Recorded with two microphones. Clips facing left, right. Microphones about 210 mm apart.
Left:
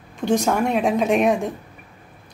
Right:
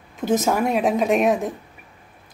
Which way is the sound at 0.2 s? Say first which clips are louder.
Even; 5° right (ahead or behind).